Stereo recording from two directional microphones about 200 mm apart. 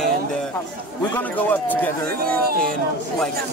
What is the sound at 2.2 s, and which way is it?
Speech, 50° right (ahead or behind).